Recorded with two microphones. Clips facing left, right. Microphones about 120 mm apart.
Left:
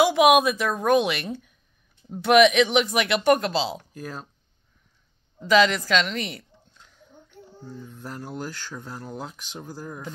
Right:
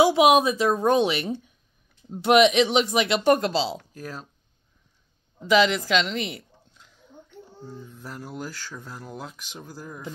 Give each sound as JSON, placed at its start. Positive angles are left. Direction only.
{"t": 0.0, "sound": "speech", "side_deg": -25}
{"t": 3.9, "sound": "speech", "side_deg": 0}
{"t": 5.5, "sound": "speech", "side_deg": -20}
{"t": 7.9, "sound": "speech", "side_deg": 0}